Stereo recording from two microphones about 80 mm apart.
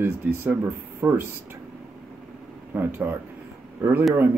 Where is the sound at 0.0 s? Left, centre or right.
Right.